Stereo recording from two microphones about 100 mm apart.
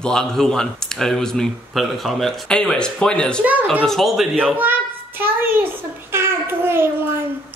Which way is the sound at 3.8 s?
Centre (ahead or behind).